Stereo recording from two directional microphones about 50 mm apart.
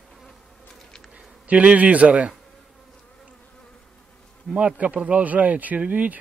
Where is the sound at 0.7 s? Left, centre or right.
Centre.